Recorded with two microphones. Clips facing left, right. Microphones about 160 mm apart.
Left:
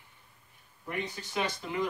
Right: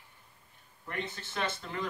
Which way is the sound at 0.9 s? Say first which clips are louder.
Left 2 dB; 10° left (ahead or behind).